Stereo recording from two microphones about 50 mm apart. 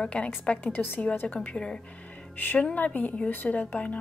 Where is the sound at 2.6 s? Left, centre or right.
Left.